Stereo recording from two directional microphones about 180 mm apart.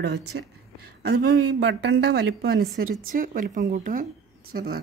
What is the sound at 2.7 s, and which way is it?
Speech, 50° right (ahead or behind).